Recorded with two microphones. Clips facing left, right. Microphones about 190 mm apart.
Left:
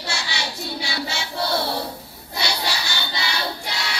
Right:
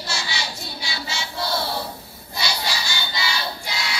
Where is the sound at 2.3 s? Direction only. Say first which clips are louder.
Left 1 dB; 60° left (ahead or behind).